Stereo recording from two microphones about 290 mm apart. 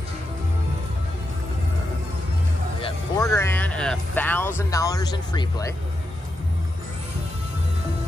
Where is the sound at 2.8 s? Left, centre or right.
Centre.